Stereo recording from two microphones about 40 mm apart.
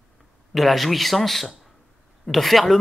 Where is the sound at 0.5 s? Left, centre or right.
Centre.